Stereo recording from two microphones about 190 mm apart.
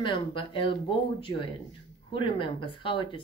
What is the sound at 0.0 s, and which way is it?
Speech, 25° left (ahead or behind).